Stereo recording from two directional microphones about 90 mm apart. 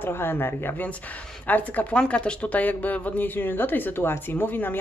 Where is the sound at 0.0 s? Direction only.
25° left (ahead or behind).